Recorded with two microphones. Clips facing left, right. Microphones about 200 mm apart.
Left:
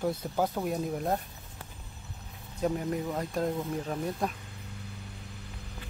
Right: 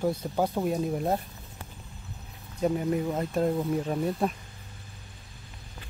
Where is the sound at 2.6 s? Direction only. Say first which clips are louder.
Right 4 dB; 5° right (ahead or behind).